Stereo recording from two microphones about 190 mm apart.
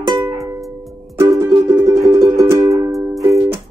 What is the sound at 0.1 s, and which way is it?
Music, 20° right (ahead or behind).